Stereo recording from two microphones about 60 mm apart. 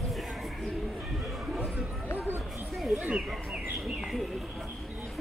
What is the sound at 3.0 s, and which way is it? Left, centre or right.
Bird, centre.